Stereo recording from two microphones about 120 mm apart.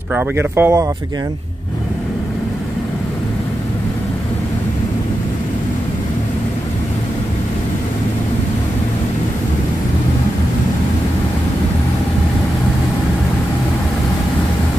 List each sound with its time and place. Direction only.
0.1 s speech: 20° right (ahead or behind)